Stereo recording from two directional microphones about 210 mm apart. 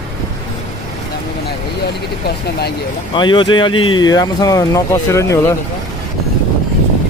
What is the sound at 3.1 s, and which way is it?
Speech, 20° left (ahead or behind).